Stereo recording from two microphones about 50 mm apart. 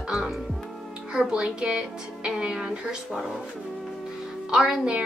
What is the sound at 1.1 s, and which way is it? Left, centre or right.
Speech, centre.